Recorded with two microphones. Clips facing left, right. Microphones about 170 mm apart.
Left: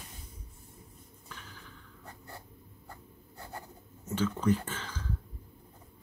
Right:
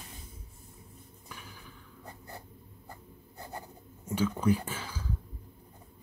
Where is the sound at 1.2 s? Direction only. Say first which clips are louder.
Right 1 dB; 10° right (ahead or behind).